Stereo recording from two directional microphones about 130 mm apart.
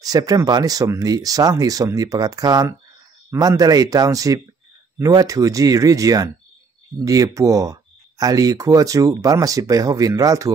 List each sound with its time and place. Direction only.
0.0 s speech: 30° right (ahead or behind)